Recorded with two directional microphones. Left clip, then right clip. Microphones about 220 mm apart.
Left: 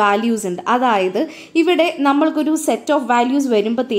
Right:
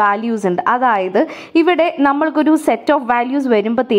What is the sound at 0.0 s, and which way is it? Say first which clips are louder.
A woman's voice: right 1 dB; 20° right (ahead or behind).